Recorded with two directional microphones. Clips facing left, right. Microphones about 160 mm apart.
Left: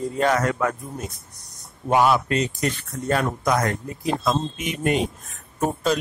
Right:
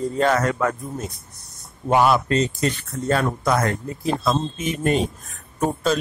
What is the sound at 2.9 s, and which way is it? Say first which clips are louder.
A man's voice: right 1 dB; 15° left (ahead or behind).